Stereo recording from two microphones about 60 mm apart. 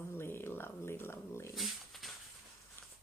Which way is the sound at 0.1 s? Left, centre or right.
Left.